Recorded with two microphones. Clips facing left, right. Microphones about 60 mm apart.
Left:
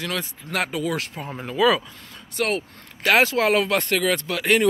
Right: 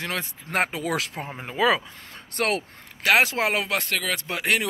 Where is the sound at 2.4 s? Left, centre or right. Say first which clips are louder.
Left 1 dB; right.